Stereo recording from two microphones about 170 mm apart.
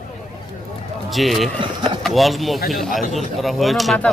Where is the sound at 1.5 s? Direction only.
25° right (ahead or behind).